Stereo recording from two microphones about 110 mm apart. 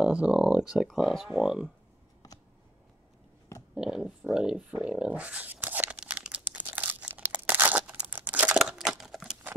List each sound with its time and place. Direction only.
0.0 s speech: 10° right (ahead or behind)
2.2 s a sound: 35° left (ahead or behind)
3.7 s dog: 5° right (ahead or behind)